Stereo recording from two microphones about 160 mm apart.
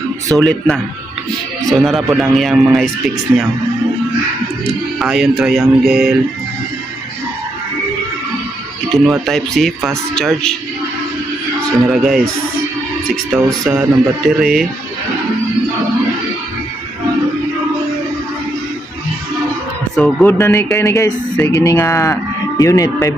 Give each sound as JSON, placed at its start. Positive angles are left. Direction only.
{"t": 0.4, "sound": "speech", "side_deg": 5}
{"t": 4.9, "sound": "speech", "side_deg": -5}
{"t": 8.8, "sound": "music", "side_deg": 0}
{"t": 9.2, "sound": "speech", "side_deg": 0}
{"t": 11.9, "sound": "speech", "side_deg": 0}
{"t": 13.7, "sound": "speech", "side_deg": -5}
{"t": 20.0, "sound": "speech", "side_deg": 10}